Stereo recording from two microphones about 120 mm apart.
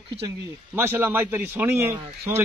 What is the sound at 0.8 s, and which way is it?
A man's voice, 20° right (ahead or behind).